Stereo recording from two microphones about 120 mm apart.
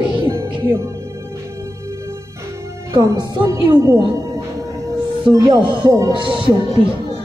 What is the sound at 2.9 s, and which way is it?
Speech, 35° right (ahead or behind).